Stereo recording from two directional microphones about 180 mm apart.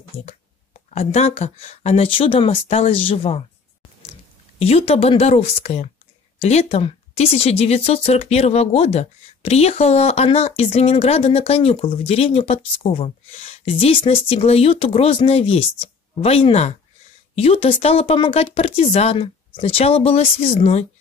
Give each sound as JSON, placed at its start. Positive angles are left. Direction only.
{"t": 0.1, "sound": "speech", "side_deg": 15}
{"t": 0.8, "sound": "speech", "side_deg": 35}
{"t": 4.6, "sound": "speech", "side_deg": 35}